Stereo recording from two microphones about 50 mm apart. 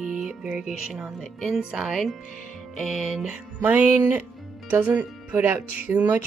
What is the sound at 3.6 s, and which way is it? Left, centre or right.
Speech, right.